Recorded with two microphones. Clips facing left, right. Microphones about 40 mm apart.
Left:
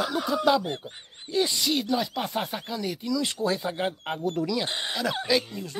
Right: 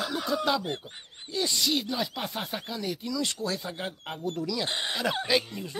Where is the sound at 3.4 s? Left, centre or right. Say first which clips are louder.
Left 6 dB; left.